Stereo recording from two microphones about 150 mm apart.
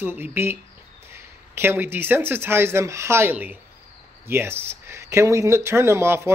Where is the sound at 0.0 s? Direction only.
15° right (ahead or behind).